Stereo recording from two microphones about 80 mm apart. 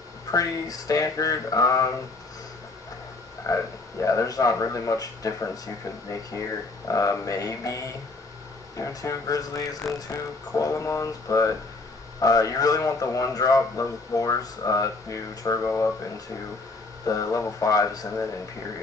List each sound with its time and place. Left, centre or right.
0.3 s speech: left
3.4 s speech: left
6.9 s speech: left
15.6 s speech: left
17.0 s speech: left